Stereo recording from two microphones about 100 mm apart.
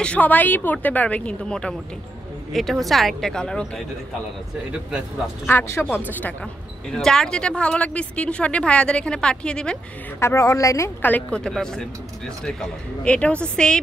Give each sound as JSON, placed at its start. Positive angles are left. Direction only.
{"t": 0.0, "sound": "a woman's voice", "side_deg": 15}
{"t": 5.5, "sound": "a woman's voice", "side_deg": 20}
{"t": 6.9, "sound": "a woman's voice", "side_deg": 5}
{"t": 10.2, "sound": "a woman's voice", "side_deg": 30}
{"t": 11.0, "sound": "a woman's voice", "side_deg": 15}